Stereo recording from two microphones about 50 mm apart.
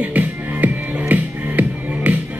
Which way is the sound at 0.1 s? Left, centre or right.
Right.